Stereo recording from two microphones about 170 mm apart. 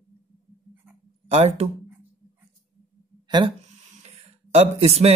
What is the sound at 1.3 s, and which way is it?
Speech, 40° right (ahead or behind).